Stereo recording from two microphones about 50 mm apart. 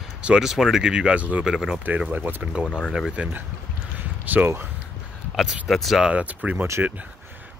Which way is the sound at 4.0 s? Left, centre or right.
Right.